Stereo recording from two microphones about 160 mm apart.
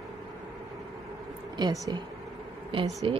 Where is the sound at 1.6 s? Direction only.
25° right (ahead or behind).